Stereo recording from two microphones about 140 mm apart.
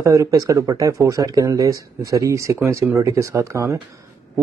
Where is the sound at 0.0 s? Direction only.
20° right (ahead or behind).